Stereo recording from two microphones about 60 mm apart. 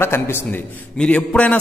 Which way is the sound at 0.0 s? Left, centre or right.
Left.